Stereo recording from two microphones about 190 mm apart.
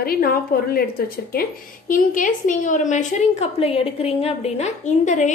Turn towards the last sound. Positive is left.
turn(degrees=40)  # may be behind; listen again after turning